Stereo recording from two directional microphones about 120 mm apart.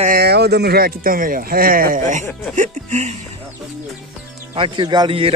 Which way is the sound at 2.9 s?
75° right (ahead or behind).